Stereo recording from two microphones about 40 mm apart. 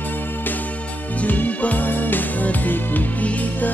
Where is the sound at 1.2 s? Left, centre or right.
Left.